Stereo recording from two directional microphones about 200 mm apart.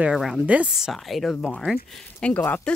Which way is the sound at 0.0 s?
Centre (ahead or behind).